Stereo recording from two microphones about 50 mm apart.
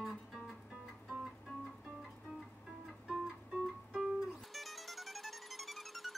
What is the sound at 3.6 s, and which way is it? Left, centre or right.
Music, centre.